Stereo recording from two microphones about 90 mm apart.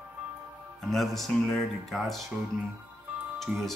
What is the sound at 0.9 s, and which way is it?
Speech, centre (ahead or behind).